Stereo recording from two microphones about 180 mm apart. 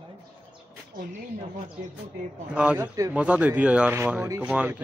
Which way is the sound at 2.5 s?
5° right (ahead or behind).